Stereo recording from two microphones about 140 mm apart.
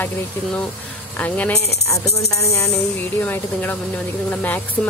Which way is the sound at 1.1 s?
10° left (ahead or behind).